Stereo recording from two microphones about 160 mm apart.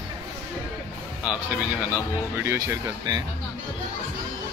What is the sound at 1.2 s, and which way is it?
Speech, 10° right (ahead or behind).